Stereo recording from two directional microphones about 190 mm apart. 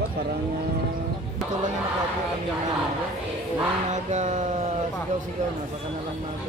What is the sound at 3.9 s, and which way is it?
Speech, 40° right (ahead or behind).